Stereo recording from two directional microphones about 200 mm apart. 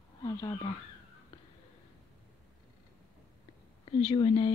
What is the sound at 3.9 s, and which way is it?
Speech, 25° left (ahead or behind).